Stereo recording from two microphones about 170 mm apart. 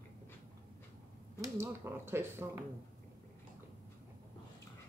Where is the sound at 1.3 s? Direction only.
15° right (ahead or behind).